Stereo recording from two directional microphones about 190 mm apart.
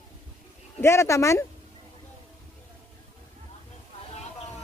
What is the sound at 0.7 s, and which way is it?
Speech, 15° left (ahead or behind).